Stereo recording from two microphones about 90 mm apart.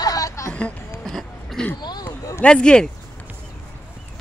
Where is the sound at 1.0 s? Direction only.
Centre (ahead or behind).